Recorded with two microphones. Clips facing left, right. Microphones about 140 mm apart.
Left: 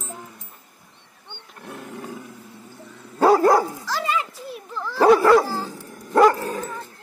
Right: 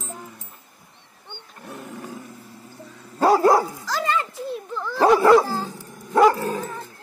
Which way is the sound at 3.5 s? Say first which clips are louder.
Even; centre (ahead or behind).